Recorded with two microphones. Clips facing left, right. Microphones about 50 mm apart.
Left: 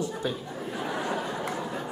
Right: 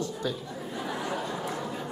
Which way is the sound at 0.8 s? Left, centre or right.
Left.